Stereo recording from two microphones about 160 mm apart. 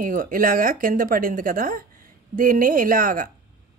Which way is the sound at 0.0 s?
60° right (ahead or behind).